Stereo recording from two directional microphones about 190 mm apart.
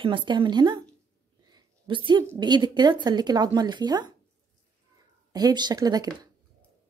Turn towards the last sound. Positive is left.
turn(degrees=-20)  # may be behind; listen again after turning